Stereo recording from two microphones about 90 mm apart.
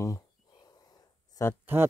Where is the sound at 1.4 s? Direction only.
35° left (ahead or behind).